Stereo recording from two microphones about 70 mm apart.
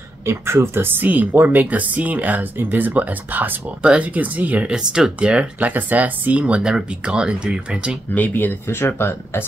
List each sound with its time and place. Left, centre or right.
0.2 s speech: right; by 8.0 s centre
8.1 s speech: left